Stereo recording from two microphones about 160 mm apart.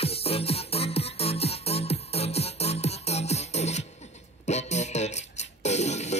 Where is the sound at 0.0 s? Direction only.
35° left (ahead or behind).